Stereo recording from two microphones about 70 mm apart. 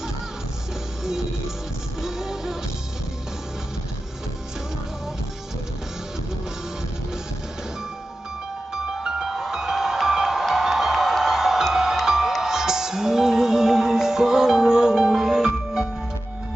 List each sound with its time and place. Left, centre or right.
2.0 s music: centre
8.7 s music: centre